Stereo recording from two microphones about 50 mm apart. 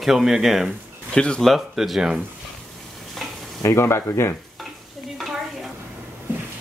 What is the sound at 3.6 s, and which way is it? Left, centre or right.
Speech, left.